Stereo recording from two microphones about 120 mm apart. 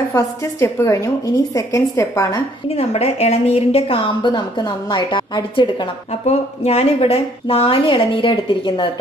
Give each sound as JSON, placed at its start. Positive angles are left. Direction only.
{"t": 0.1, "sound": "a woman's voice", "side_deg": 25}
{"t": 2.7, "sound": "a woman's voice", "side_deg": 60}
{"t": 6.2, "sound": "a woman's voice", "side_deg": 60}